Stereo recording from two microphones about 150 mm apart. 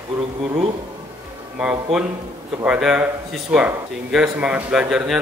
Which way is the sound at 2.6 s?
5° right (ahead or behind).